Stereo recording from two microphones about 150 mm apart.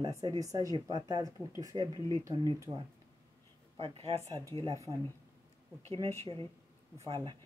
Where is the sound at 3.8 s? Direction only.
35° right (ahead or behind).